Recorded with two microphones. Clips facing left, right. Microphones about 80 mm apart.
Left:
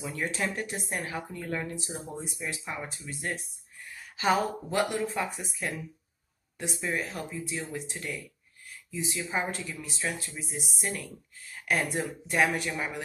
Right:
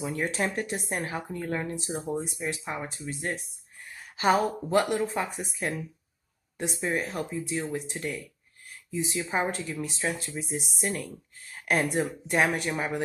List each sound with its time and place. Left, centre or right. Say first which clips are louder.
0.0 s a woman's voice: right 3 dB; right
6.8 s speech: right 3 dB; right